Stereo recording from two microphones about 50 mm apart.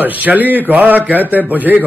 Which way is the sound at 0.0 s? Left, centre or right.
Right.